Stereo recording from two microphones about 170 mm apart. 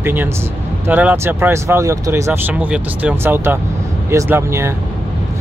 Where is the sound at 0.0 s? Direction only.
10° right (ahead or behind).